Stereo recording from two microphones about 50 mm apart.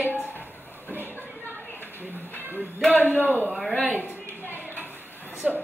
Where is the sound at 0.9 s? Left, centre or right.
Left.